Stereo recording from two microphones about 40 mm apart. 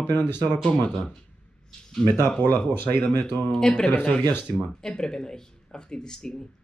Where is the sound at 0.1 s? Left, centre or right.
Left.